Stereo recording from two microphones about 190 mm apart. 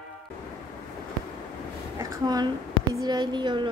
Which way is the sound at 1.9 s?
20° right (ahead or behind).